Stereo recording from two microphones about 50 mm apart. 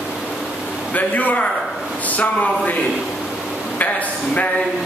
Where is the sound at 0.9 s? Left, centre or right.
Left.